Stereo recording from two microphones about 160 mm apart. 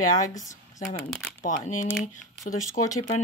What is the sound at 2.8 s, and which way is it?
Speech, 40° left (ahead or behind).